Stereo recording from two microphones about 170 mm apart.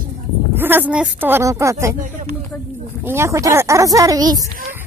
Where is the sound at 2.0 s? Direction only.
50° right (ahead or behind).